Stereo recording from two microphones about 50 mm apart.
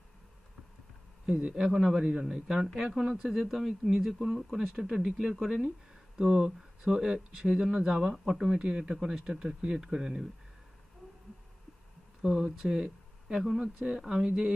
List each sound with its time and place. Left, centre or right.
1.3 s speech: centre
12.2 s speech: centre